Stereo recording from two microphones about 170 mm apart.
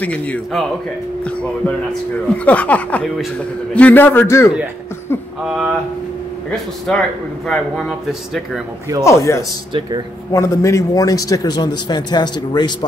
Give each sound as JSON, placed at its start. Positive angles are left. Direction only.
{"t": 0.0, "sound": "speech", "side_deg": 5}
{"t": 2.3, "sound": "speech", "side_deg": 10}
{"t": 5.4, "sound": "a man's voice", "side_deg": -5}
{"t": 6.9, "sound": "a man's voice", "side_deg": 5}
{"t": 9.0, "sound": "a man's voice", "side_deg": 15}